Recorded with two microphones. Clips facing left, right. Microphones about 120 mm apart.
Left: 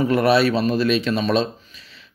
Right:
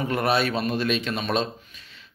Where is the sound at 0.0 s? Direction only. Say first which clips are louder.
Left 7 dB; 40° left (ahead or behind).